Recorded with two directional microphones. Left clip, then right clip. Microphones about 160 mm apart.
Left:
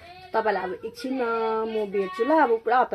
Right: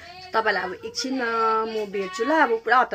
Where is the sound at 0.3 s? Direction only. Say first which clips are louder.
Right 2 dB; centre (ahead or behind).